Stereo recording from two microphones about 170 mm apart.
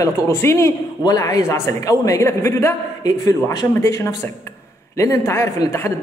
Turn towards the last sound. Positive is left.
turn(degrees=15)  # may be behind; listen again after turning